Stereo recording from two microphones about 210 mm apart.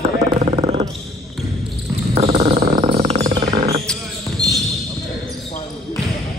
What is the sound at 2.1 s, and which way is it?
Wild animals, 30° right (ahead or behind).